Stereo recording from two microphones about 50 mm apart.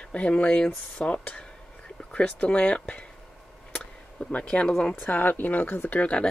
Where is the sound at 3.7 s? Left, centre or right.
Left.